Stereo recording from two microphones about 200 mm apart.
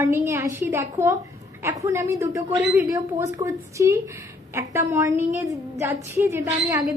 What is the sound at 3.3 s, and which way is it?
A woman's voice, 15° right (ahead or behind).